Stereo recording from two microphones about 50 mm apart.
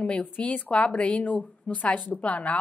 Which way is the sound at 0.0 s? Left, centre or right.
Left.